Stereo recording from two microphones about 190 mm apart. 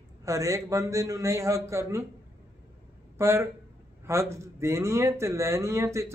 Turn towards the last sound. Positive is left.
turn(degrees=-15)  # may be behind; listen again after turning